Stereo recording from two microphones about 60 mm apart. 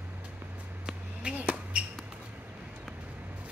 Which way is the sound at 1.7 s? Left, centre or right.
Centre.